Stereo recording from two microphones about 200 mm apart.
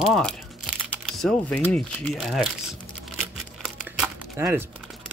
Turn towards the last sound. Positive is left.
turn(degrees=-10)  # may be behind; listen again after turning